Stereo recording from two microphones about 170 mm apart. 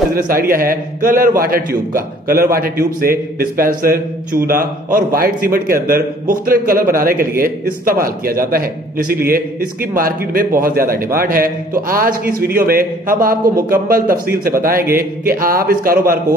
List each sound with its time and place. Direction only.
0.1 s a man's voice: 55° right (ahead or behind)